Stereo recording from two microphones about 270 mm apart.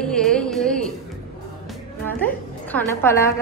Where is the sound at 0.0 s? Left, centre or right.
Centre.